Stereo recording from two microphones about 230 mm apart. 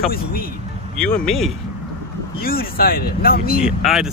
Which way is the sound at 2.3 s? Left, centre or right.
Left.